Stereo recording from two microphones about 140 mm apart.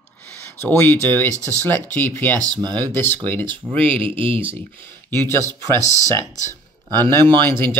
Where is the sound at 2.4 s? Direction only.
30° right (ahead or behind).